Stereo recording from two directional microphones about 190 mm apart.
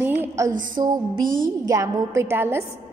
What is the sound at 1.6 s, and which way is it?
A woman's voice, 15° right (ahead or behind).